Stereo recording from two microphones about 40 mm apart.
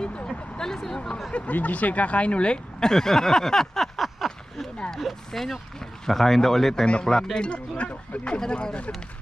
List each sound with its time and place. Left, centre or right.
0.0 s vehicle: left
0.3 s speech: centre
1.3 s speech: left
2.9 s a sound: centre
4.9 s speech: centre
6.9 s speech: left